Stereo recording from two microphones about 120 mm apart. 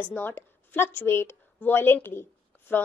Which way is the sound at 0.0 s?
15° left (ahead or behind).